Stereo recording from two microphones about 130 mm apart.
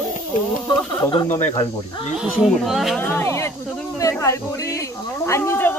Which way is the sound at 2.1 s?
Centre (ahead or behind).